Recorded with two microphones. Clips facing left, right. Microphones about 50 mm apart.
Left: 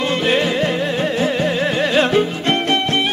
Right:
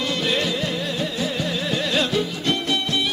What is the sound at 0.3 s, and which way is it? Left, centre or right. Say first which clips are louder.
Music: left 8 dB; left.